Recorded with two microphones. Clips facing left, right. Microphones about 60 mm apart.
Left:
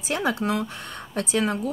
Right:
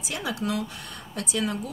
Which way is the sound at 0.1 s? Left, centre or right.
Left.